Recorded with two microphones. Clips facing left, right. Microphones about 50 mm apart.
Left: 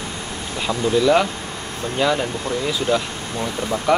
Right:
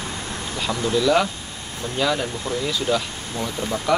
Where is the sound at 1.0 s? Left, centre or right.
Centre.